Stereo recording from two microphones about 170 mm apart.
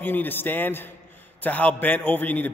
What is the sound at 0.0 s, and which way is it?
A man's voice, 10° left (ahead or behind).